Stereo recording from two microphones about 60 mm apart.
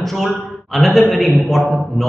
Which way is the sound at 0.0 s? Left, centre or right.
Centre.